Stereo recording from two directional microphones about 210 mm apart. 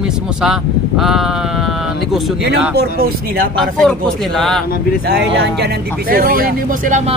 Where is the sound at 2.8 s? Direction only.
45° right (ahead or behind).